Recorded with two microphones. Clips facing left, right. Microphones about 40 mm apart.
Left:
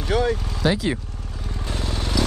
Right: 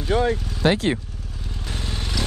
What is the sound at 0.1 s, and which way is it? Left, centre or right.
Speech, centre.